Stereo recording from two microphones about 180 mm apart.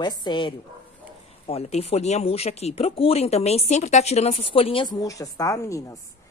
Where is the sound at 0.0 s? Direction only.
25° left (ahead or behind).